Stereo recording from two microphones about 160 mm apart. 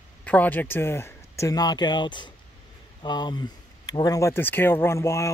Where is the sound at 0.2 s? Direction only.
10° left (ahead or behind).